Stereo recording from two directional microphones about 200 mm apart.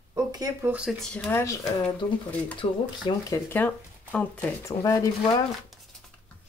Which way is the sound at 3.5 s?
10° left (ahead or behind).